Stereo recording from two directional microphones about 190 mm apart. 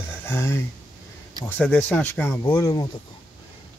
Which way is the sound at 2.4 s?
20° left (ahead or behind).